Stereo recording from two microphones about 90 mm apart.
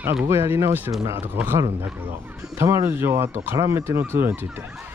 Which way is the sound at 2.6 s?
30° right (ahead or behind).